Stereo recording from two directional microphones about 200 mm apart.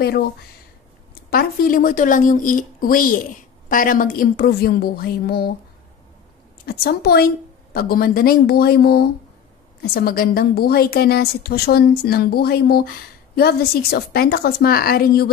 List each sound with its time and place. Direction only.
1.3 s a woman's voice: 45° left (ahead or behind)
6.6 s a woman's voice: 50° left (ahead or behind)